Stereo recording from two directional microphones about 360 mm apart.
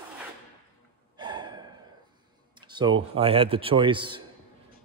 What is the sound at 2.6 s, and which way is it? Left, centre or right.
Speech, centre.